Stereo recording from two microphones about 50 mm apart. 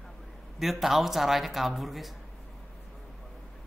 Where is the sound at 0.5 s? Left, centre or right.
Centre.